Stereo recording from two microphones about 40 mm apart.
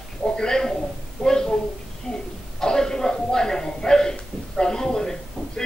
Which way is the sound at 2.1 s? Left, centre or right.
Left.